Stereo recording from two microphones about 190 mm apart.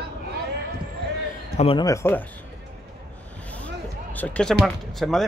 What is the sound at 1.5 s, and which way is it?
Speech, 30° left (ahead or behind).